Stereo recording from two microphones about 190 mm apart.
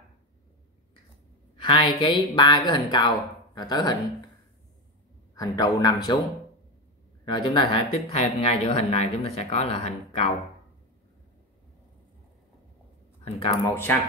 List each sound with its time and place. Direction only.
1.6 s speech: 25° left (ahead or behind)
5.3 s speech: 20° left (ahead or behind)
7.2 s speech: 25° left (ahead or behind)
13.2 s speech: 30° left (ahead or behind)